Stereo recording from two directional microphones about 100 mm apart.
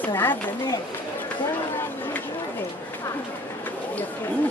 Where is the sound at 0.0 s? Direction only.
20° left (ahead or behind).